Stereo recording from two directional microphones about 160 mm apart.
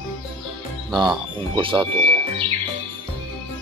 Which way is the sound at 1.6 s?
30° right (ahead or behind).